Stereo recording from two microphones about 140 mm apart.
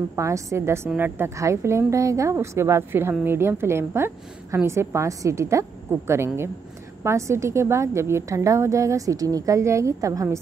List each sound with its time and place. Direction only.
0.1 s a woman's voice: 20° right (ahead or behind)